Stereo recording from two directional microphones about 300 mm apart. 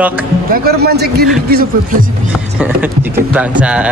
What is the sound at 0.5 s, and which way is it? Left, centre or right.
A man's voice, right.